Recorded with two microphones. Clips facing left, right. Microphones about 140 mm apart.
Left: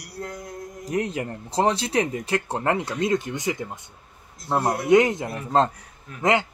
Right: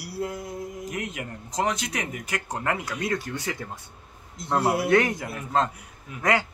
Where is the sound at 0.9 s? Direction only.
35° left (ahead or behind); by 3.7 s 20° left (ahead or behind).